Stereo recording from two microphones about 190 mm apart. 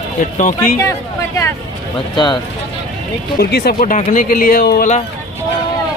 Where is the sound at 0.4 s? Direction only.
45° left (ahead or behind).